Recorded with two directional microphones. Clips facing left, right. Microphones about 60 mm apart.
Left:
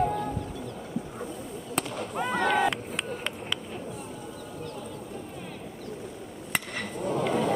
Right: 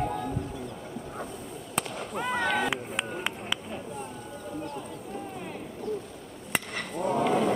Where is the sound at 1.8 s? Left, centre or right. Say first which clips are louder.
Left 1 dB; centre.